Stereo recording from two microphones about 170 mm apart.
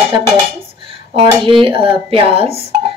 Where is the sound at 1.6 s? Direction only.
30° right (ahead or behind).